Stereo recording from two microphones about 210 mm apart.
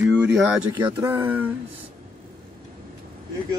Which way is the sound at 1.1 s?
10° right (ahead or behind).